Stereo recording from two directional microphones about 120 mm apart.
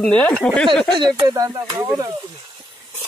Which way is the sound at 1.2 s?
30° right (ahead or behind).